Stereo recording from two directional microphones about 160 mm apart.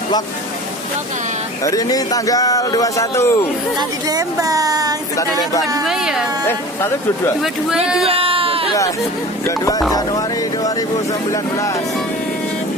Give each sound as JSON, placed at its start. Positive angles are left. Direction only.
{"t": 1.6, "sound": "speech", "side_deg": 20}
{"t": 4.1, "sound": "a sound", "side_deg": -20}
{"t": 5.4, "sound": "speech", "side_deg": 20}
{"t": 5.9, "sound": "a woman's voice", "side_deg": -5}
{"t": 6.4, "sound": "speech", "side_deg": 15}
{"t": 7.7, "sound": "a woman's voice", "side_deg": -5}
{"t": 8.1, "sound": "a sound", "side_deg": -35}
{"t": 9.9, "sound": "speech", "side_deg": 25}